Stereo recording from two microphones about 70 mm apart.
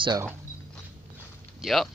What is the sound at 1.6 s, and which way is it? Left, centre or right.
Speech, centre.